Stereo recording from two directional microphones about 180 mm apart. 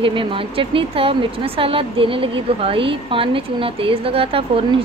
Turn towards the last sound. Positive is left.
turn(degrees=-30)  # may be behind; listen again after turning